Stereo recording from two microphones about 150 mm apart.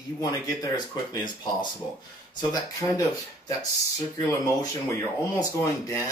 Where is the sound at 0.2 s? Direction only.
25° left (ahead or behind).